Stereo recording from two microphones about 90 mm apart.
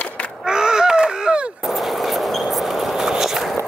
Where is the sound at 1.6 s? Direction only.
Centre (ahead or behind).